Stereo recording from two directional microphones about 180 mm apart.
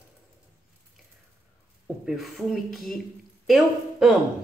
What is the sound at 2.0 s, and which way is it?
A woman's voice, centre (ahead or behind).